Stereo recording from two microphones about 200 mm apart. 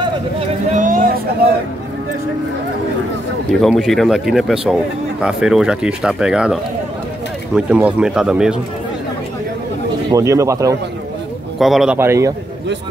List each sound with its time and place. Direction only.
0.7 s a sound: 40° right (ahead or behind)
3.6 s speech: centre (ahead or behind)
10.1 s speech: 15° right (ahead or behind)
11.6 s speech: centre (ahead or behind)